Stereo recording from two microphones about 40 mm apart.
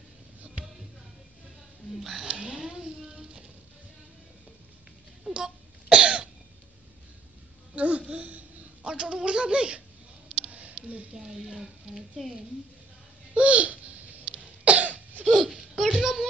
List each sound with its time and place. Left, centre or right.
2.0 s speech: centre
2.2 s a sound: centre
5.3 s throat clearing: right
7.7 s babbling: right
8.1 s laughter: right
8.8 s speech: right
10.4 s a sound: right
11.1 s a woman's voice: centre
13.3 s babbling: right
14.3 s cough: right
15.7 s a sound: centre
16.0 s a sound: centre